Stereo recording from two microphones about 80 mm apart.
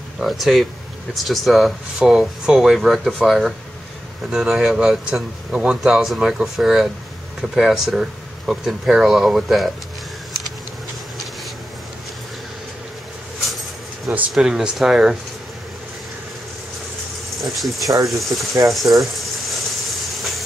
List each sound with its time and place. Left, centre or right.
0.2 s speech: centre
14.3 s speech: centre
17.4 s speech: centre
18.0 s a sound: centre